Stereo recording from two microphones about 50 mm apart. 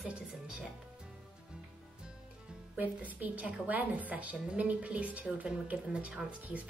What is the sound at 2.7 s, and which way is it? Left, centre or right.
A woman's voice, right.